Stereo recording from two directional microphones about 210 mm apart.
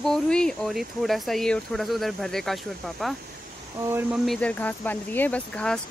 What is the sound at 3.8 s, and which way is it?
Speech, 10° right (ahead or behind).